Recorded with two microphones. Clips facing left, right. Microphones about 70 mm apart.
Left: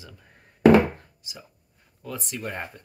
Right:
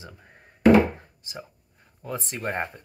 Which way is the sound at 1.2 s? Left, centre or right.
Right.